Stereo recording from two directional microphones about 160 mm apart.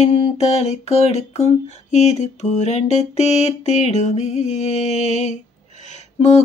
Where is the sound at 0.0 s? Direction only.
40° left (ahead or behind).